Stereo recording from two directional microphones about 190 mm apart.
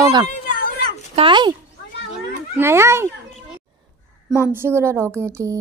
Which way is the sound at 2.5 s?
15° right (ahead or behind).